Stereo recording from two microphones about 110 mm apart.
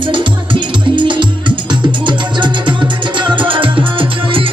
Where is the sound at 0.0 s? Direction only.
50° right (ahead or behind).